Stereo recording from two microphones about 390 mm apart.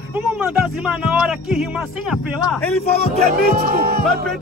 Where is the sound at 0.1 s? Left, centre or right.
Centre.